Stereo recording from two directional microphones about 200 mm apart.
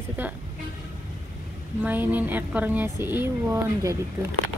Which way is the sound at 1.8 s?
10° right (ahead or behind).